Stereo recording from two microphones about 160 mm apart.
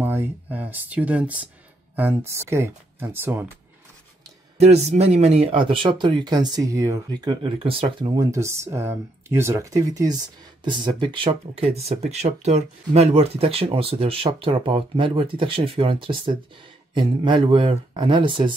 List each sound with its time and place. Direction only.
0.0 s speech: 10° right (ahead or behind)
4.6 s speech: 40° right (ahead or behind)
8.2 s speech: 20° right (ahead or behind)